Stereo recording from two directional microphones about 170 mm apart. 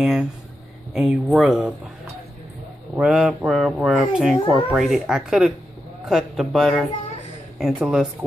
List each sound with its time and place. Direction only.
0.0 s speech: 5° right (ahead or behind)
3.0 s speech: 5° right (ahead or behind)